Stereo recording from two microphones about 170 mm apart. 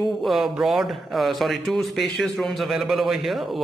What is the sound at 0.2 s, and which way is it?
Speech, centre (ahead or behind).